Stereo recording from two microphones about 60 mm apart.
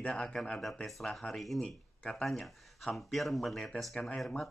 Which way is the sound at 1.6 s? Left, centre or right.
Centre.